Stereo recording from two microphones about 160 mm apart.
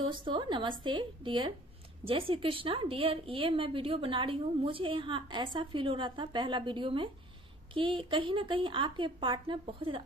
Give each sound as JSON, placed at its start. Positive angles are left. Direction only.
{"t": 0.0, "sound": "a woman's voice", "side_deg": -30}